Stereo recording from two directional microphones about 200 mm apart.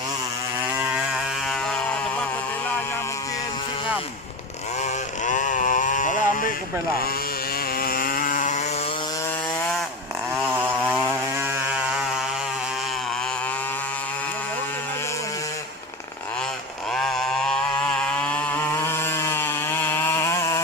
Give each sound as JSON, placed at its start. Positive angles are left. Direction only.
{"t": 5.2, "sound": "a sound", "side_deg": 40}
{"t": 7.8, "sound": "chainsaw", "side_deg": 45}
{"t": 10.3, "sound": "vehicle", "side_deg": -5}
{"t": 16.9, "sound": "vehicle", "side_deg": 5}